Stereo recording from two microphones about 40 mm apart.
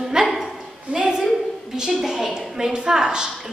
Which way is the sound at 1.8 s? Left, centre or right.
Centre.